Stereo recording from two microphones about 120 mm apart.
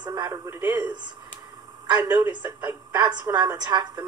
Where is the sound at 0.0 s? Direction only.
30° right (ahead or behind).